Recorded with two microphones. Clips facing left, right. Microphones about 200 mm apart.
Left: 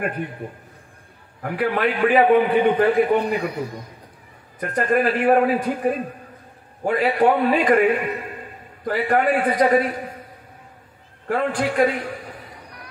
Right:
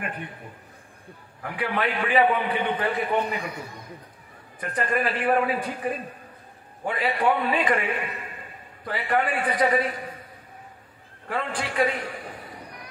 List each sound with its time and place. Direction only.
1.4 s a man's voice: 45° left (ahead or behind)
4.6 s a man's voice: 50° left (ahead or behind)
11.2 s a man's voice: 45° left (ahead or behind)